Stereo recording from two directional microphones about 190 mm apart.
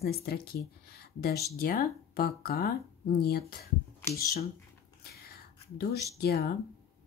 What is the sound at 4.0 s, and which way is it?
Speech, 15° left (ahead or behind).